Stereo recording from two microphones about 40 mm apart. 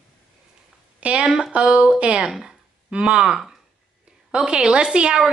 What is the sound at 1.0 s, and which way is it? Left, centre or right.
A woman's voice, right.